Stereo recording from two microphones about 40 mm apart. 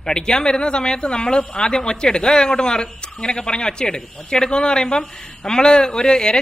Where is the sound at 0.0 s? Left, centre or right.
Left.